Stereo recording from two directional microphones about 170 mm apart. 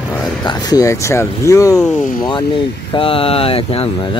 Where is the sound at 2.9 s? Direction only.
30° left (ahead or behind).